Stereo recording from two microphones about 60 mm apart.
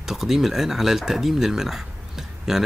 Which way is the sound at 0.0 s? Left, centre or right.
Centre.